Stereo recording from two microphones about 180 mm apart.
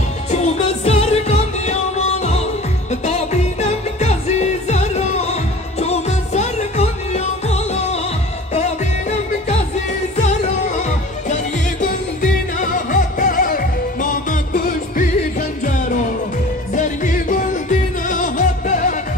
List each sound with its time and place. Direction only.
0.3 s music: 40° left (ahead or behind)
10.8 s music: 40° left (ahead or behind)
16.7 s music: 45° left (ahead or behind)